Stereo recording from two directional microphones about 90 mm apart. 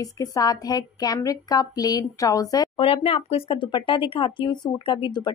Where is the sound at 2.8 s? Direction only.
90° left.